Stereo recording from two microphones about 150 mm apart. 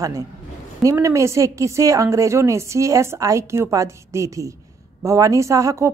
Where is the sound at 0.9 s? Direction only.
20° right (ahead or behind).